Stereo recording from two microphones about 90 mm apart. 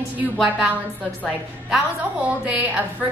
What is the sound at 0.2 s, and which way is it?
Speech, 10° right (ahead or behind).